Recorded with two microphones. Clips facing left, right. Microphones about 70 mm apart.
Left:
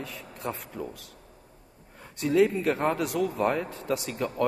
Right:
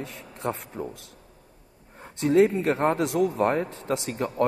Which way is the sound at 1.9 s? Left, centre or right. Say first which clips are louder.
Right 3 dB; right.